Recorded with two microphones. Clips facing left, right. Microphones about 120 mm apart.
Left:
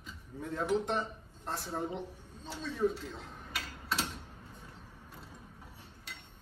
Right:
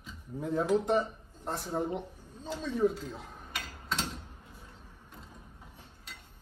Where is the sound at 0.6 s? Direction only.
Centre (ahead or behind).